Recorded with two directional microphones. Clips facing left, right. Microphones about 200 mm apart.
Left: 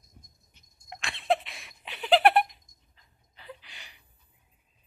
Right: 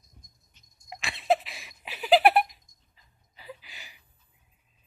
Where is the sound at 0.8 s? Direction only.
5° right (ahead or behind).